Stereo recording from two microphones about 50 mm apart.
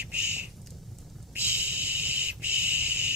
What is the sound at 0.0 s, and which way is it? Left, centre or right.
Squawk, right.